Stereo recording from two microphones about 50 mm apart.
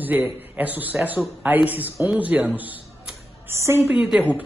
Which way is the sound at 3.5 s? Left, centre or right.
Right.